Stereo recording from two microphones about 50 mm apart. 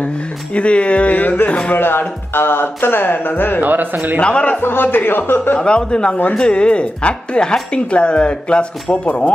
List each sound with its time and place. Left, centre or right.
0.6 s speech: left
1.8 s speech: left
3.6 s speech: right
4.2 s speech: left
4.6 s speech: left
5.6 s speech: centre